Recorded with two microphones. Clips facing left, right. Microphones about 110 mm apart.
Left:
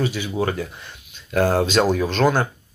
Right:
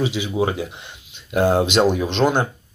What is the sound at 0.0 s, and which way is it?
Speech, 20° right (ahead or behind).